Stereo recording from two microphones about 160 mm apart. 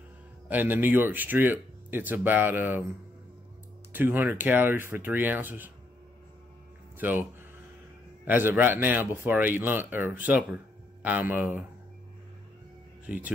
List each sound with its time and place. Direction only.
0.5 s speech: 10° right (ahead or behind)
3.9 s speech: 10° right (ahead or behind)
7.0 s speech: 10° right (ahead or behind)
8.3 s speech: 10° right (ahead or behind)
13.0 s speech: 10° right (ahead or behind)